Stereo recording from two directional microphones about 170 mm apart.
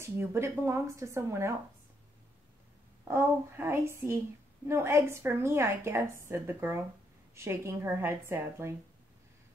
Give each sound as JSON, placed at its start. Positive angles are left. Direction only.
{"t": 0.0, "sound": "a woman's voice", "side_deg": -15}
{"t": 3.1, "sound": "a woman's voice", "side_deg": -15}